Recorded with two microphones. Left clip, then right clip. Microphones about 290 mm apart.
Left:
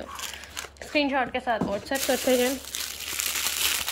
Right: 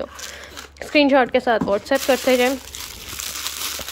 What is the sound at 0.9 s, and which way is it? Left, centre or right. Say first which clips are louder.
Speech: right 10 dB; centre.